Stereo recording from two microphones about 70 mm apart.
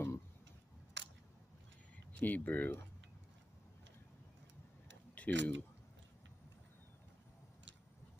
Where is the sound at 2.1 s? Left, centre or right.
Left.